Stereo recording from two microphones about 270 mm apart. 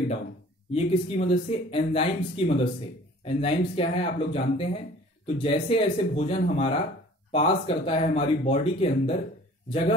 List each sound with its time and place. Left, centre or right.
0.7 s speech: left